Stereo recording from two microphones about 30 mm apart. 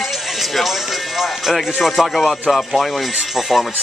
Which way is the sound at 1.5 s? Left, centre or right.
Centre.